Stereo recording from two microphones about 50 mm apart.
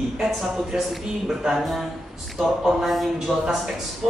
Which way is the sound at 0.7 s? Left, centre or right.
Centre.